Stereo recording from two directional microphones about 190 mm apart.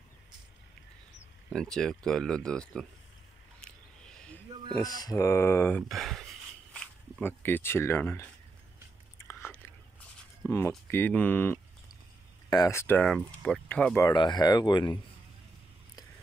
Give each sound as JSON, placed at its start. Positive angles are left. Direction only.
{"t": 1.5, "sound": "speech", "side_deg": 5}
{"t": 3.6, "sound": "a sound", "side_deg": 5}
{"t": 4.7, "sound": "speech", "side_deg": 20}
{"t": 9.2, "sound": "biting", "side_deg": 15}
{"t": 10.9, "sound": "speech", "side_deg": 10}
{"t": 14.0, "sound": "speech", "side_deg": 20}